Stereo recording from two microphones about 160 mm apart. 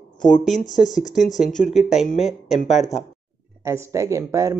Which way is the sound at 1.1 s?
Centre (ahead or behind).